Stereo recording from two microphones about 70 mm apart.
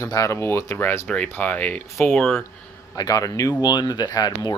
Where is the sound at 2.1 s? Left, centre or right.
Centre.